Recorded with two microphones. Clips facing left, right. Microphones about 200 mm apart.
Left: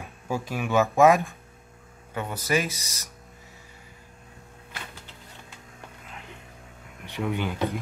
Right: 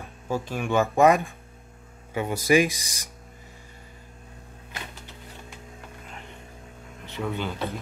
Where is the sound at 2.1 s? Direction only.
10° right (ahead or behind).